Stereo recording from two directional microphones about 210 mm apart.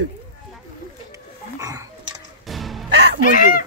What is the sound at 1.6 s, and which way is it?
Dog, 15° right (ahead or behind).